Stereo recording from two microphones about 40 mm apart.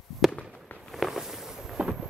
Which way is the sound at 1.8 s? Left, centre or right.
Right.